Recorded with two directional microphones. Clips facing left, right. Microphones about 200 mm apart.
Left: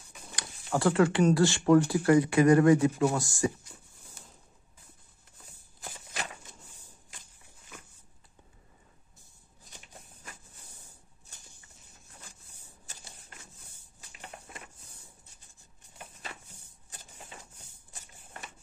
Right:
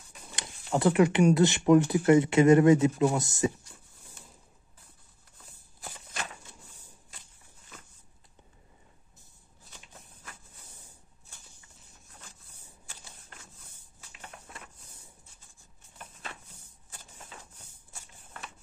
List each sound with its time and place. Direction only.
0.4 s speech: 20° right (ahead or behind)